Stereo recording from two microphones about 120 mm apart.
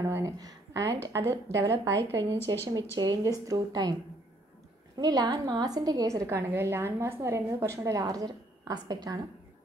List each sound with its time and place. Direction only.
0.0 s a sound: 30° right (ahead or behind)
1.0 s a woman's voice: 25° right (ahead or behind)
2.3 s speech: 20° left (ahead or behind)
3.0 s a woman's voice: 30° right (ahead or behind)
4.9 s a woman's voice: 35° right (ahead or behind)